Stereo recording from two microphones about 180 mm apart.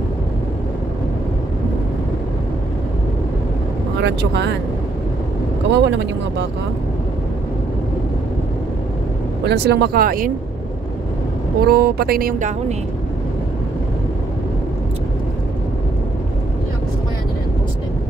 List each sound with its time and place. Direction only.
4.0 s speech: 70° right (ahead or behind)
5.7 s speech: 75° right (ahead or behind)
9.4 s speech: 70° right (ahead or behind); by 10.3 s 55° right (ahead or behind)
11.6 s speech: 60° right (ahead or behind)